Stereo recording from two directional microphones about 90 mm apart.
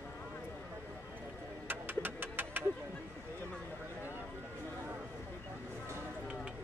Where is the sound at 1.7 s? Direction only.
20° right (ahead or behind).